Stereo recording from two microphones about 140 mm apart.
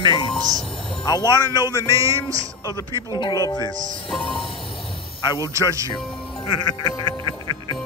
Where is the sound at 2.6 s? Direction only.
25° left (ahead or behind).